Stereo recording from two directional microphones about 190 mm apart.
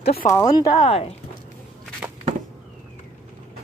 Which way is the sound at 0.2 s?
20° left (ahead or behind).